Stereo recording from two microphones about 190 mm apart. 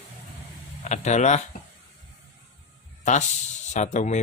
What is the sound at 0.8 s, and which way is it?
Speech, 40° left (ahead or behind).